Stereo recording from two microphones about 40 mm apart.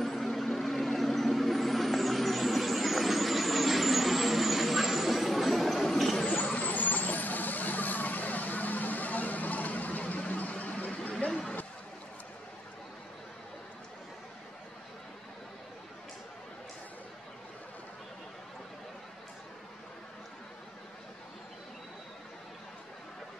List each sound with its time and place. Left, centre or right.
0.0 s vehicle: centre
6.5 s vehicle: left
10.3 s a sound: left